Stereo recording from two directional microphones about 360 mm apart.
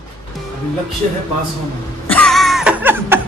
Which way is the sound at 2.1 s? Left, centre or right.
Centre.